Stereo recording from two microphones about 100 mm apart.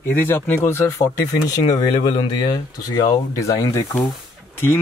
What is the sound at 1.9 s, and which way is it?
Speech, 60° left (ahead or behind).